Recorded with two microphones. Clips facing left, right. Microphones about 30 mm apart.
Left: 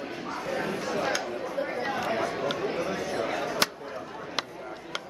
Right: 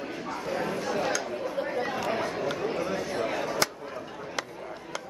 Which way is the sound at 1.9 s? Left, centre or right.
Centre.